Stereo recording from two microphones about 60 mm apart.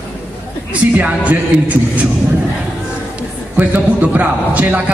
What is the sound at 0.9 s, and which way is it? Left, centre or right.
Speech, right.